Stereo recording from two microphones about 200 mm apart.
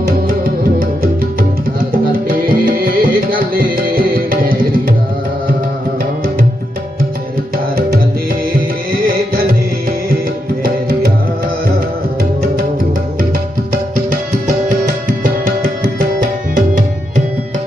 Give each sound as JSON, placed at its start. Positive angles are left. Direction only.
{"t": 0.7, "sound": "music", "side_deg": -45}
{"t": 8.5, "sound": "music", "side_deg": -45}
{"t": 10.6, "sound": "music", "side_deg": -45}
{"t": 15.0, "sound": "music", "side_deg": -45}